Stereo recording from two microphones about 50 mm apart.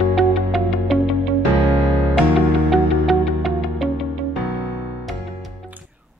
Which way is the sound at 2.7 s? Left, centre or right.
Centre.